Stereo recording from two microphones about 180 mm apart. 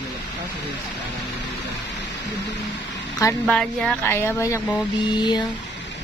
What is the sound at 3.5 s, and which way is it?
Speech, 5° left (ahead or behind).